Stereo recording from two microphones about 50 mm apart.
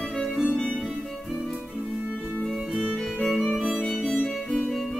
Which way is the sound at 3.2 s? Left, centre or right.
Centre.